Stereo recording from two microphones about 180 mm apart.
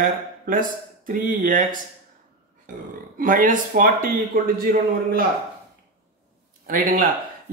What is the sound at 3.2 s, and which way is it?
A man's voice, 45° right (ahead or behind).